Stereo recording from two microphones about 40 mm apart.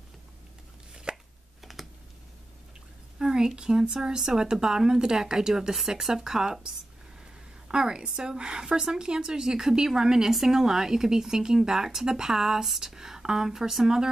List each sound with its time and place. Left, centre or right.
1.1 s chopping: right
1.6 s computer keyboard: centre
3.2 s a woman's voice: centre